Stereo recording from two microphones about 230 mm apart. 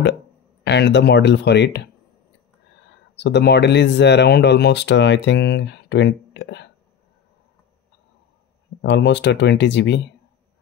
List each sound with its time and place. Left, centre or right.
0.7 s speech: left
3.2 s speech: left
8.8 s speech: left